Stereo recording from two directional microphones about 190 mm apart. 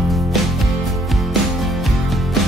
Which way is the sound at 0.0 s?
Centre (ahead or behind).